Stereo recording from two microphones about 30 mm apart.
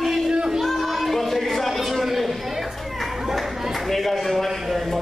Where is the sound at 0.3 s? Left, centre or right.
Right.